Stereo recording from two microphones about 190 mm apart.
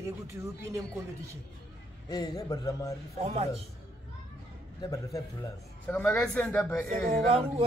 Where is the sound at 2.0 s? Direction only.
20° left (ahead or behind).